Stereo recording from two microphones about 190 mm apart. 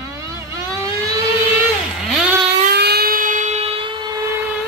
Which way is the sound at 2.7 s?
55° right (ahead or behind).